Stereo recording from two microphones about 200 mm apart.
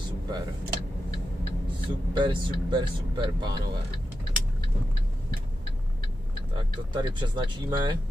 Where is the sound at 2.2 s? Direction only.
25° right (ahead or behind).